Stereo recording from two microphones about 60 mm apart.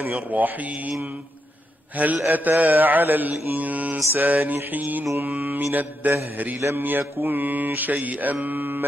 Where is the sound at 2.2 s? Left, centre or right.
Right.